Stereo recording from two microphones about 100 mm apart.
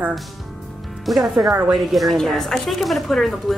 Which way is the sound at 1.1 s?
Centre (ahead or behind).